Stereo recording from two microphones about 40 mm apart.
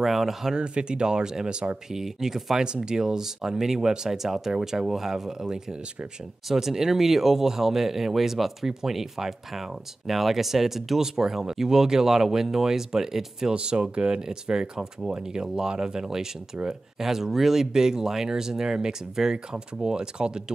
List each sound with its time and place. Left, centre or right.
0.0 s speech: centre
0.6 s speech: right
13.6 s speech: right